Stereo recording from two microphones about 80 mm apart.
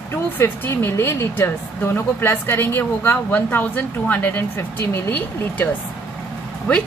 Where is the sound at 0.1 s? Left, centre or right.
Left.